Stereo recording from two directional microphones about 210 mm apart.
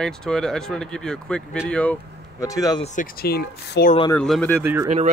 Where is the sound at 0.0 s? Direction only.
5° left (ahead or behind).